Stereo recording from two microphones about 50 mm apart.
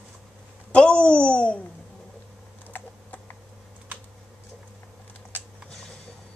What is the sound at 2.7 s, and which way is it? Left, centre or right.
Computer keyboard, left.